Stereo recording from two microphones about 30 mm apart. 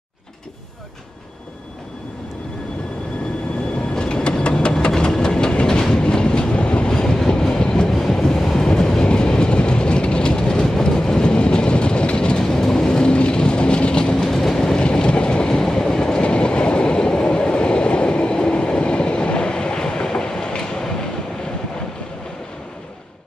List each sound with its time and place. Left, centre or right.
3.9 s train: left
6.9 s train: left
7.9 s vehicle: centre
8.5 s train: left
12.4 s vehicle: centre
13.1 s vehicle: left
14.1 s train: centre
14.8 s train: left